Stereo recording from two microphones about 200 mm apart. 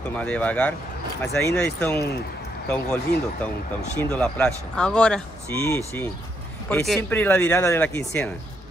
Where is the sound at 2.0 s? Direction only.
55° left (ahead or behind).